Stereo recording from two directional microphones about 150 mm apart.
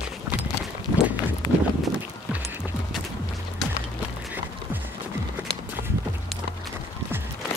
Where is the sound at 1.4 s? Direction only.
30° left (ahead or behind).